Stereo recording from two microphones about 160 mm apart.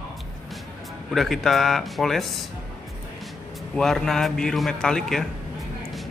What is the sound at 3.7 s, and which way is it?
A man's voice, 5° left (ahead or behind).